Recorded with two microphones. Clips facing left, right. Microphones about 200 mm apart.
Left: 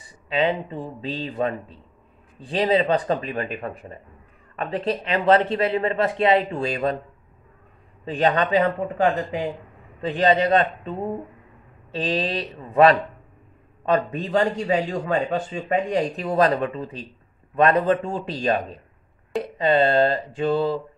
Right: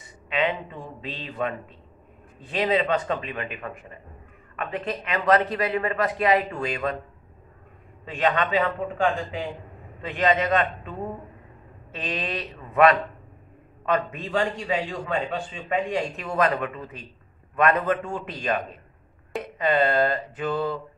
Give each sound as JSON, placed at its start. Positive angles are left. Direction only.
{"t": 0.0, "sound": "a man's voice", "side_deg": 30}
{"t": 8.0, "sound": "a man's voice", "side_deg": 35}
{"t": 10.0, "sound": "a man's voice", "side_deg": 35}